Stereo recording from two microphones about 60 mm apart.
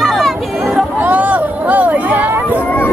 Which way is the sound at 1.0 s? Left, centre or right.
Right.